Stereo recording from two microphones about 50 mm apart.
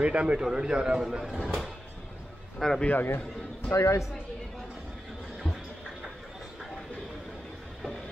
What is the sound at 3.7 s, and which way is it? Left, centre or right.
Speech, left.